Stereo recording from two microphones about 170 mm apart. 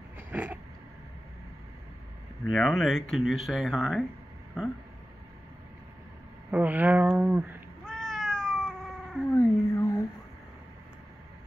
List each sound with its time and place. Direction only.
0.3 s a sound: 10° right (ahead or behind)
2.4 s speech: centre (ahead or behind)
6.5 s speech: 10° right (ahead or behind)
7.1 s cat: 5° right (ahead or behind)
9.3 s cat: 15° left (ahead or behind)